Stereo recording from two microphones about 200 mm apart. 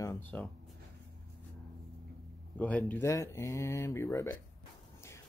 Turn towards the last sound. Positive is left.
turn(degrees=15)  # may be behind; listen again after turning